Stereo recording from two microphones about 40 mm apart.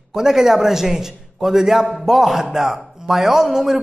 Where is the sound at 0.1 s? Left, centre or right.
Centre.